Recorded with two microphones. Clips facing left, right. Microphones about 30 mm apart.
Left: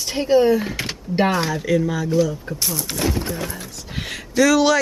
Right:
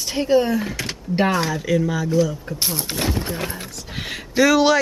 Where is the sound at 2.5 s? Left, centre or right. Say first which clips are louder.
Right 1 dB; right.